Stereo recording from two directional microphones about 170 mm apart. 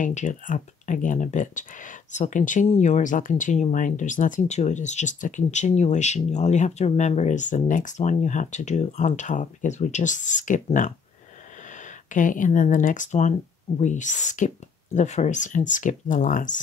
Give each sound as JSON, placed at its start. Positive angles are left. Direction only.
{"t": 0.0, "sound": "speech", "side_deg": 45}
{"t": 12.1, "sound": "speech", "side_deg": 50}